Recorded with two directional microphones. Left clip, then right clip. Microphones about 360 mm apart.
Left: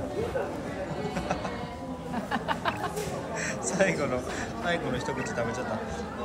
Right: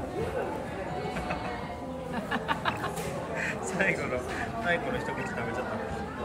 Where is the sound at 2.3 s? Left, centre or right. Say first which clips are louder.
Left 1 dB; centre.